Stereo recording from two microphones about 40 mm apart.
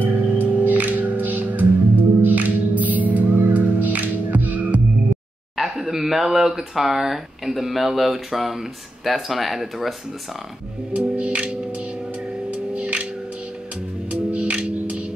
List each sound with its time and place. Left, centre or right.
0.0 s music: right
5.6 s a sound: centre
6.2 s speech: centre
11.0 s music: right
12.7 s music: right
14.1 s music: right